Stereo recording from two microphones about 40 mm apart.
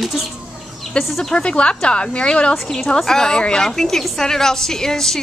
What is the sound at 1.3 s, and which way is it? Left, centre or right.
Speech, left.